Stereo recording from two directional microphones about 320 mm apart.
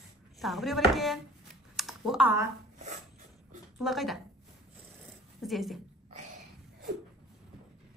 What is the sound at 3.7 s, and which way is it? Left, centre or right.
Speech, centre.